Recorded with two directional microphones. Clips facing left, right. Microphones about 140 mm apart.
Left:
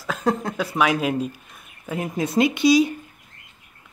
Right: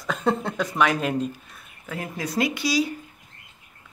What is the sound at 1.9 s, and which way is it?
Speech, 20° left (ahead or behind).